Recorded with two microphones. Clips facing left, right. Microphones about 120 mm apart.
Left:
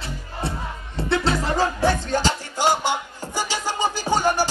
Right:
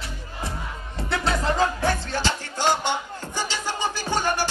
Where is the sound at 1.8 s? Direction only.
15° left (ahead or behind).